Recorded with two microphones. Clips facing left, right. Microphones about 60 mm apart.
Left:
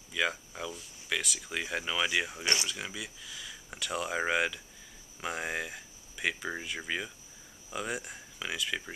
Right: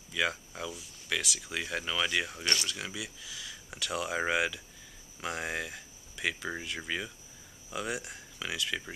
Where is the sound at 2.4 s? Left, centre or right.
Centre.